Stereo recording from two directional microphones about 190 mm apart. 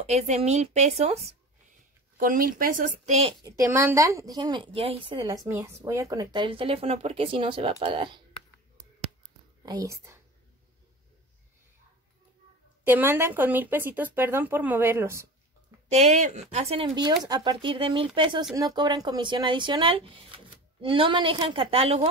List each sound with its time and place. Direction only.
0.0 s speech: 35° right (ahead or behind)
2.1 s a woman's voice: 50° right (ahead or behind)
3.4 s speech: 15° right (ahead or behind)
5.2 s speech: 15° right (ahead or behind)
9.6 s speech: 20° right (ahead or behind)
12.8 s speech: 10° right (ahead or behind)
15.9 s speech: 35° right (ahead or behind)
16.8 s speech: 20° right (ahead or behind)